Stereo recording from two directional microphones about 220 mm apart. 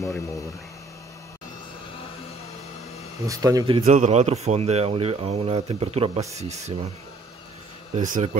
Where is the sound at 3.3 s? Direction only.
15° right (ahead or behind); by 6.8 s 30° right (ahead or behind).